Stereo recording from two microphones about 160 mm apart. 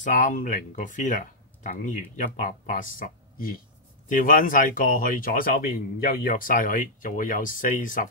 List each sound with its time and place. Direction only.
0.0 s speech: 55° left (ahead or behind)